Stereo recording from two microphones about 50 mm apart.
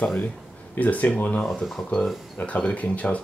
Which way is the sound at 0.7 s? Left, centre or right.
Left.